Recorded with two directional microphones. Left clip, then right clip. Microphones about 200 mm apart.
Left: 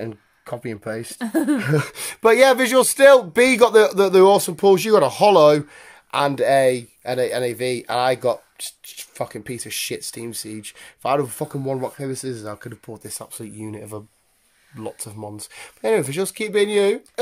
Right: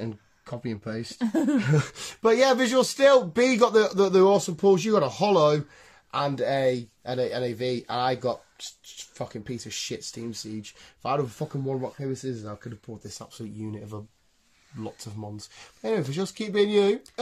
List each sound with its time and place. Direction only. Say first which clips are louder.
0.0 s speech: left 5 dB; 25° left (ahead or behind)
1.1 s speech: left 4 dB; 10° left (ahead or behind)
1.6 s speech: left 6 dB; 30° left (ahead or behind)